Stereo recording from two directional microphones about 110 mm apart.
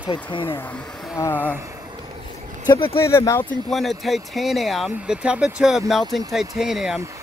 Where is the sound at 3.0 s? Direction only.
25° left (ahead or behind).